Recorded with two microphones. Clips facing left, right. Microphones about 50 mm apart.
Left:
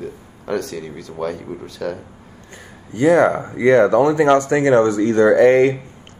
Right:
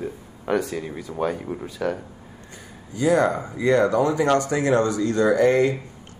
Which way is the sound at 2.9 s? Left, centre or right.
Left.